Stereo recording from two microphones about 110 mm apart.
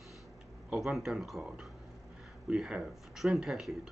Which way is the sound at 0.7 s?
5° right (ahead or behind).